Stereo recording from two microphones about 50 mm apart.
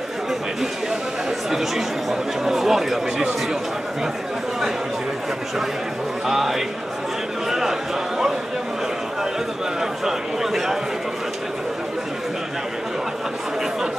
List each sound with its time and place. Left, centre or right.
2.0 s speech: centre
6.2 s a man's voice: centre
9.8 s a sound: centre